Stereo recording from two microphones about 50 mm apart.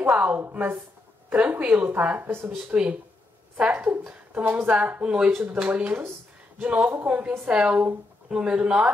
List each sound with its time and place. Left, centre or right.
0.1 s a woman's voice: right
2.5 s a woman's voice: right
3.7 s a woman's voice: right
5.0 s a woman's voice: right
5.3 s a woman's voice: right
5.8 s a woman's voice: right